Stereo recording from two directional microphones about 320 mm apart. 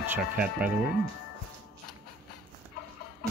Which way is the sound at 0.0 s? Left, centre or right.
Centre.